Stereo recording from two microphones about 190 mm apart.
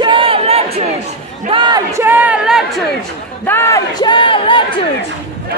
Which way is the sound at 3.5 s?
15° left (ahead or behind).